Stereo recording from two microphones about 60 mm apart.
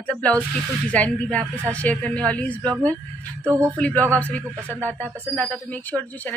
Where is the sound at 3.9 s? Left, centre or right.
Right.